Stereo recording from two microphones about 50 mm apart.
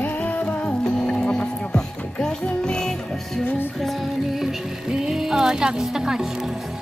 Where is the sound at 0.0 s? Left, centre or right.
Left; by 3.4 s centre.